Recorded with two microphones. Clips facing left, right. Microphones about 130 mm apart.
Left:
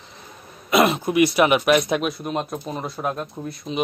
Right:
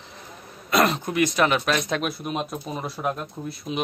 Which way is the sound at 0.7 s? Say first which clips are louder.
Left 3 dB; 5° left (ahead or behind).